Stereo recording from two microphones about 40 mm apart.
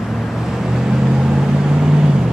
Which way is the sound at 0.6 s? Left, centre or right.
Centre.